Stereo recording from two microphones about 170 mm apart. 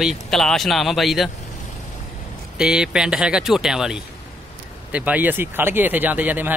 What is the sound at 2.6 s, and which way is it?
A man's voice, 5° right (ahead or behind).